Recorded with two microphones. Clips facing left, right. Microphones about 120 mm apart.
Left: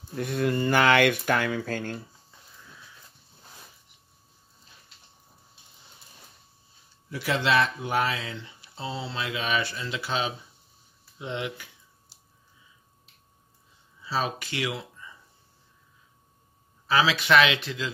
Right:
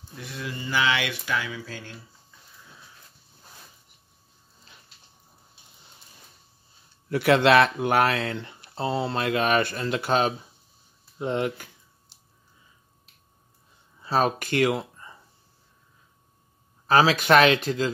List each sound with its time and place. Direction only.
0.1 s speech: 55° left (ahead or behind)
7.1 s speech: 60° right (ahead or behind); by 11.7 s 45° right (ahead or behind)
14.0 s speech: 50° right (ahead or behind)
16.8 s speech: 45° right (ahead or behind)